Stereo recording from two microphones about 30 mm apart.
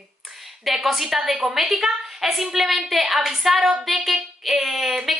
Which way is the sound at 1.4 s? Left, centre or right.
Centre.